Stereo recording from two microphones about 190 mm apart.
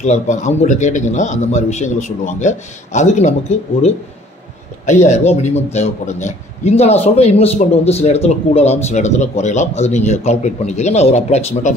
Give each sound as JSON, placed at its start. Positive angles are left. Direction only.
{"t": 0.0, "sound": "a man's voice", "side_deg": 40}
{"t": 5.0, "sound": "a man's voice", "side_deg": 35}